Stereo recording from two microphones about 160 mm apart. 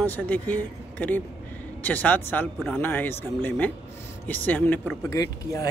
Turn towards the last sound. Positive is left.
turn(degrees=20)  # may be behind; listen again after turning